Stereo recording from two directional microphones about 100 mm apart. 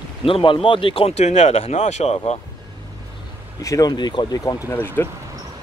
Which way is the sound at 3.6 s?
35° left (ahead or behind).